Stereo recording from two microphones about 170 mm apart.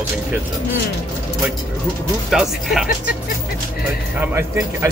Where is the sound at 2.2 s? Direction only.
Centre (ahead or behind).